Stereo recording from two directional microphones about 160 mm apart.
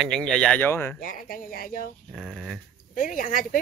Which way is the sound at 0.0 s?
5° left (ahead or behind).